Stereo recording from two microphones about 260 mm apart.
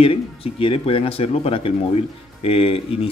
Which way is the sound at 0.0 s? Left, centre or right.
Left.